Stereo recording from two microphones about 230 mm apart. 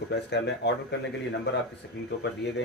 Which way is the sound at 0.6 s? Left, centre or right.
Left.